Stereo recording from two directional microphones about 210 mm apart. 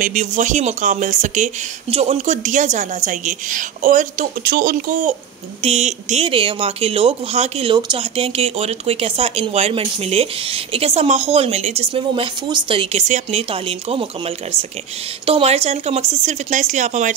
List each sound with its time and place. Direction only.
0.0 s speech: 35° right (ahead or behind)
5.6 s speech: 30° right (ahead or behind)